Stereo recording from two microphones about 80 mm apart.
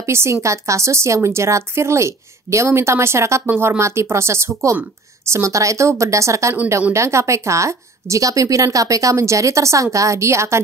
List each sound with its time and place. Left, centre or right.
0.0 s speech: right